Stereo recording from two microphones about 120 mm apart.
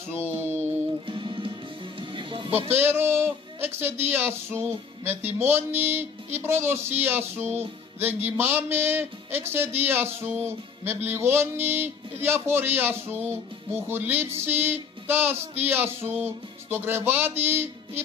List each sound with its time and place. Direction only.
0.3 s music: 20° right (ahead or behind)
1.0 s music: 45° right (ahead or behind)
2.7 s speech: 20° right (ahead or behind)